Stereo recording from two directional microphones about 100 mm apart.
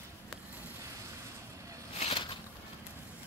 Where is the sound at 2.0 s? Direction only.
90° left.